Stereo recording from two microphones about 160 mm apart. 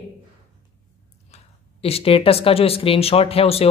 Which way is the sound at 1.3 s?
40° left (ahead or behind).